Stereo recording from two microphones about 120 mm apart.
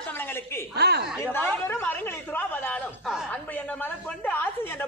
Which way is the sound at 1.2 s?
15° left (ahead or behind).